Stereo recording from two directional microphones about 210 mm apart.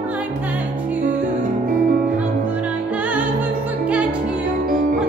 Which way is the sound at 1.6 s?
45° right (ahead or behind).